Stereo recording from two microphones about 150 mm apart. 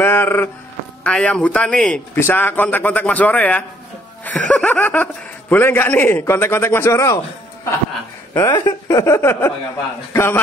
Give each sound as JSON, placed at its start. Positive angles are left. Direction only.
{"t": 0.0, "sound": "a sound", "side_deg": 15}
{"t": 1.0, "sound": "speech", "side_deg": 5}
{"t": 8.4, "sound": "speech", "side_deg": 30}